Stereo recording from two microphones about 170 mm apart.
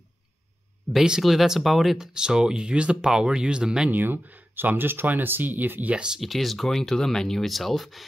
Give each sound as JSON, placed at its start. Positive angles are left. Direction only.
{"t": 0.9, "sound": "speech", "side_deg": -5}